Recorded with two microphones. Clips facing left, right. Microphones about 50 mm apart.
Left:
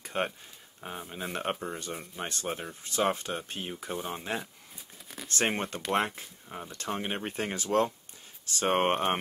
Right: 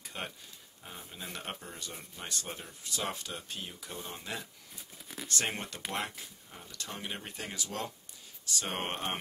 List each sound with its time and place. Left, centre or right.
0.0 s a sound: left
0.8 s speech: left
5.0 s shuffling cards: centre
5.3 s speech: left